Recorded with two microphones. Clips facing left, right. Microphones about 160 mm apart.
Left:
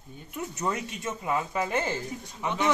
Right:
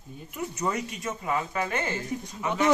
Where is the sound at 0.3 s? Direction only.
Centre (ahead or behind).